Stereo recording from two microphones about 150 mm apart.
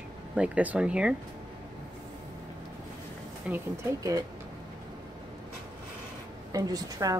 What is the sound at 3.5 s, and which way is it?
Speech, 10° right (ahead or behind).